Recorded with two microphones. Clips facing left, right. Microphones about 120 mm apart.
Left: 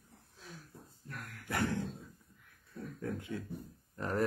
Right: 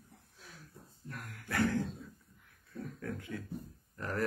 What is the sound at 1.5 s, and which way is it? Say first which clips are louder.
Speech: right 3 dB; 20° left (ahead or behind).